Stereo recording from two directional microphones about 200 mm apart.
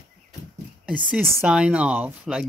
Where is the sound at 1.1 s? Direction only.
5° right (ahead or behind).